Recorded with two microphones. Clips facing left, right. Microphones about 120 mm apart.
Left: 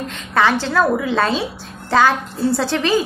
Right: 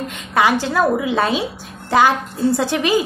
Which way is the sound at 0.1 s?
15° right (ahead or behind).